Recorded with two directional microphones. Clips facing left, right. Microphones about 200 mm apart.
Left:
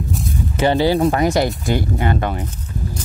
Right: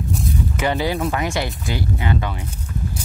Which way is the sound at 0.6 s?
30° left (ahead or behind).